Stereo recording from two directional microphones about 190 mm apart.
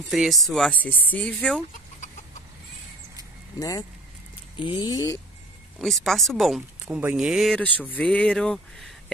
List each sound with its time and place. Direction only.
0.1 s speech: centre (ahead or behind)
3.5 s speech: 20° left (ahead or behind)
5.8 s speech: centre (ahead or behind)